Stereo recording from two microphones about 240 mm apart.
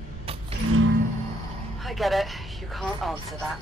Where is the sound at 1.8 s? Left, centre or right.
Centre.